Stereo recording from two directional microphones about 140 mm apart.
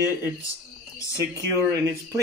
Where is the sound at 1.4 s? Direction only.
25° right (ahead or behind).